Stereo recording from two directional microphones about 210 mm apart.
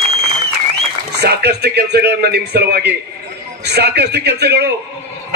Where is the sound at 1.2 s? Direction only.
50° right (ahead or behind).